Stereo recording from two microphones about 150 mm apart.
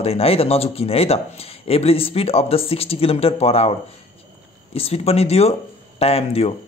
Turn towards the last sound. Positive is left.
turn(degrees=40)  # may be behind; listen again after turning